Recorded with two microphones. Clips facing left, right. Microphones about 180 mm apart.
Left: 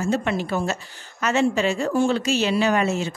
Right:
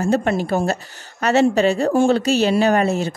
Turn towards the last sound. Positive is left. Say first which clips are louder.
# right 4 dB
turn(degrees=-40)  # may be behind; listen again after turning